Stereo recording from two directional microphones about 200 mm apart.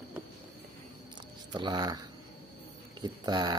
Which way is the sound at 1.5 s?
20° right (ahead or behind).